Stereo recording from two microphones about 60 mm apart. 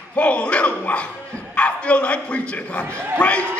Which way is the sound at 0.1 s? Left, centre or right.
Left.